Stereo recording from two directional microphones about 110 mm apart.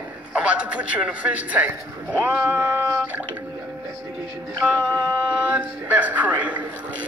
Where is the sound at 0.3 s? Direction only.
10° right (ahead or behind).